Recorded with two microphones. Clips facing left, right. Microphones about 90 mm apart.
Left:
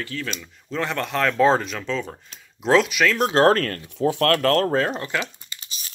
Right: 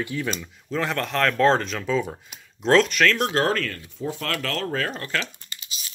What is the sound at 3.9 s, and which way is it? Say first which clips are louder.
Speech: left 10 dB; 70° left (ahead or behind).